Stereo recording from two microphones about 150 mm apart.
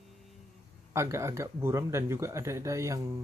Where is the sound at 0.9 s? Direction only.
20° right (ahead or behind).